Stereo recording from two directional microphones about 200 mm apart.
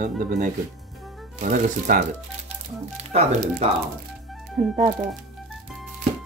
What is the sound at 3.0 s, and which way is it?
Speech, 30° right (ahead or behind).